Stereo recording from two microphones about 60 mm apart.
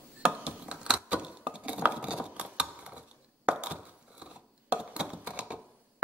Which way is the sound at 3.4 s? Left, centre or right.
Centre.